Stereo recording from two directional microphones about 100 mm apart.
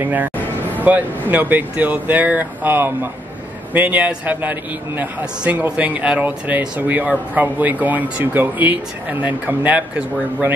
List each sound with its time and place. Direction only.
0.0 s a man's voice: 15° right (ahead or behind)